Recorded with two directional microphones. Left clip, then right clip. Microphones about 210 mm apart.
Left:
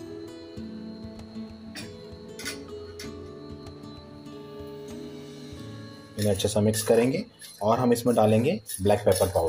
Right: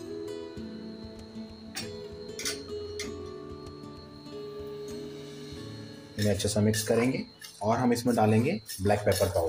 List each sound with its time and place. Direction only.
6.2 s speech: 15° left (ahead or behind)